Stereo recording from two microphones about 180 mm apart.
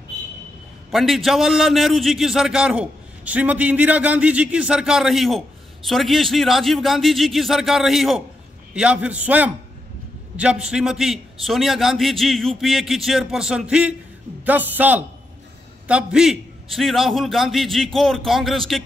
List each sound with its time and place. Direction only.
0.9 s a man's voice: centre (ahead or behind)